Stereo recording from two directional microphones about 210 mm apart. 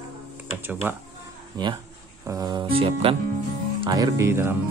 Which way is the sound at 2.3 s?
20° right (ahead or behind).